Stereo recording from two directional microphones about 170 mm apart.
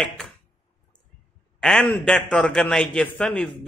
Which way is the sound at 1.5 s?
5° left (ahead or behind).